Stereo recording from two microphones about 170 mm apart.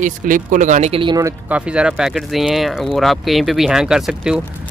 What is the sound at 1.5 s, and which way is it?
Speech, 5° right (ahead or behind).